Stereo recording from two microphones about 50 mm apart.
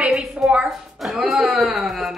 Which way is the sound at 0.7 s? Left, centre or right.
Centre.